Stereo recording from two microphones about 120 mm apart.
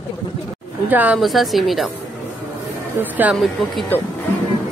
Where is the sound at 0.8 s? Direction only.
15° right (ahead or behind).